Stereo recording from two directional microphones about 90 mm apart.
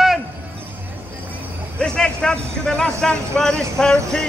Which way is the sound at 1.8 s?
10° left (ahead or behind).